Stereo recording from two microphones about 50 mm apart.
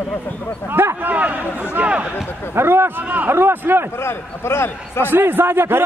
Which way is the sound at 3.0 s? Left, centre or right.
Right.